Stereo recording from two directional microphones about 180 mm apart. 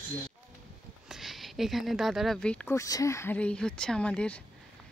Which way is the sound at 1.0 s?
Centre (ahead or behind).